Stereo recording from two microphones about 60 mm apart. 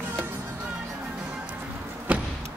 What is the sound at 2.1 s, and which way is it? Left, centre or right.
Vehicle, right.